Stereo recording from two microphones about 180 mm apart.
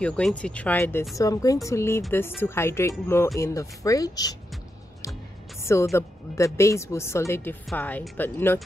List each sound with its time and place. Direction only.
0.0 s a woman's voice: 5° left (ahead or behind)
5.6 s a woman's voice: 15° left (ahead or behind)